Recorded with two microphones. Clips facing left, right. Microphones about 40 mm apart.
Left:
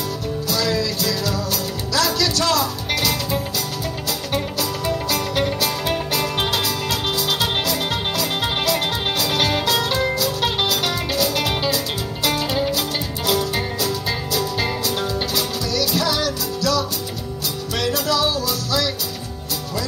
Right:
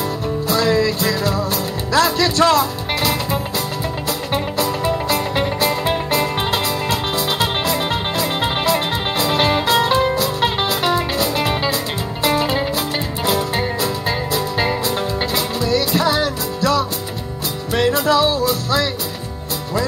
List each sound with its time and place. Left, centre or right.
0.5 s music: right